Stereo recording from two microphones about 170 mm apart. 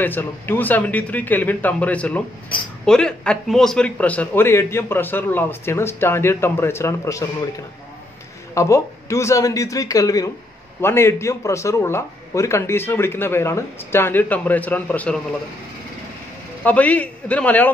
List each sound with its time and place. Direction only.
0.0 s a man's voice: 10° left (ahead or behind)
8.5 s a man's voice: 15° left (ahead or behind)
16.6 s a man's voice: 10° left (ahead or behind)